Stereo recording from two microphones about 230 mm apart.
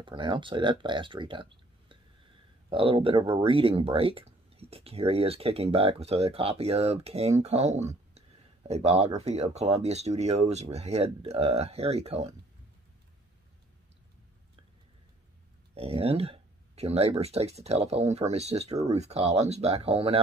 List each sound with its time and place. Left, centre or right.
0.0 s speech: right
15.7 s speech: right